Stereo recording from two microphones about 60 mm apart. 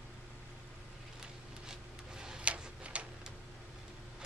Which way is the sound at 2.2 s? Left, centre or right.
Centre.